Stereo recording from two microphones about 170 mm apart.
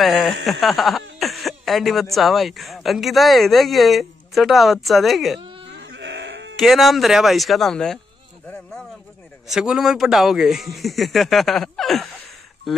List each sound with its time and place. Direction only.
0.0 s speech: centre (ahead or behind)
5.7 s sheep: 90° right
6.5 s speech: centre (ahead or behind)
9.5 s speech: 5° right (ahead or behind)